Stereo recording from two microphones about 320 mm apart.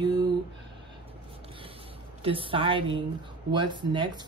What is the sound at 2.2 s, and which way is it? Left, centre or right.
Speech, centre.